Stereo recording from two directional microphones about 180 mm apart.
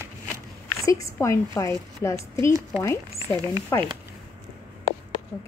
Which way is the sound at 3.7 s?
15° left (ahead or behind).